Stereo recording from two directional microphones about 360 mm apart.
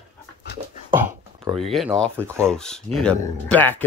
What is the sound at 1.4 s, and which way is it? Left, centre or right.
Speech, centre.